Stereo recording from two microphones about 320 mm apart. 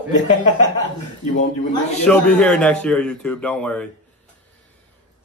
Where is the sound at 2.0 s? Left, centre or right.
Centre.